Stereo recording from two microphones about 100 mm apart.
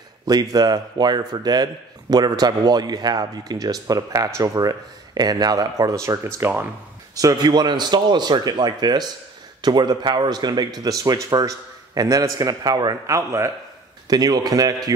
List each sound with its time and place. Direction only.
0.2 s a man's voice: 40° right (ahead or behind); by 6.7 s 25° right (ahead or behind)
7.2 s a man's voice: 40° right (ahead or behind)
13.0 s a man's voice: 30° right (ahead or behind)